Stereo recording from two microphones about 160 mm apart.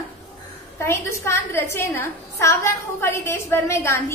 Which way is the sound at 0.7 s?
15° left (ahead or behind).